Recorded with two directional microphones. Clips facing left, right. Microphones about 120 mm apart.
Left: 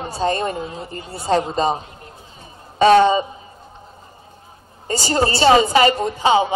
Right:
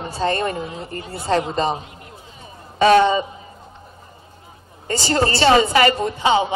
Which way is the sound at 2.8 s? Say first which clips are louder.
Left 1 dB; 30° left (ahead or behind).